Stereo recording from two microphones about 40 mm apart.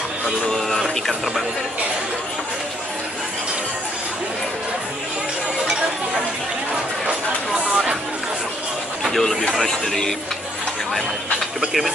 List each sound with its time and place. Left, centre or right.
0.5 s speech: centre
6.7 s a sound: right
9.0 s speech: centre